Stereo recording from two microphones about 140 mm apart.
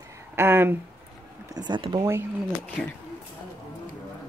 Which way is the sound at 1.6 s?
30° right (ahead or behind).